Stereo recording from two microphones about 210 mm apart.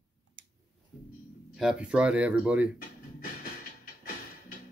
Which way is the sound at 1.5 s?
5° right (ahead or behind).